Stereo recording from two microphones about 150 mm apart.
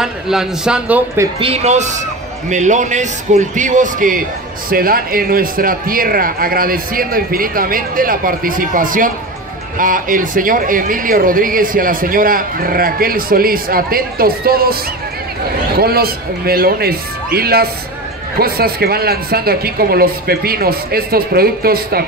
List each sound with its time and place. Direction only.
0.0 s a man's voice: 5° right (ahead or behind)
1.4 s a man's voice: 45° right (ahead or behind); by 4.2 s 60° right (ahead or behind)
4.6 s speech: 75° right (ahead or behind); by 22.0 s 90° right